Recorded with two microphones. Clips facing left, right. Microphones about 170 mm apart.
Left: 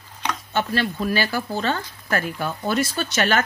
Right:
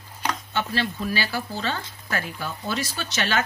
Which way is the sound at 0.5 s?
50° left (ahead or behind).